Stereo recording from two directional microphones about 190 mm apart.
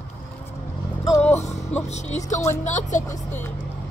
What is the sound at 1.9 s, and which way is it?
Speech, 35° left (ahead or behind).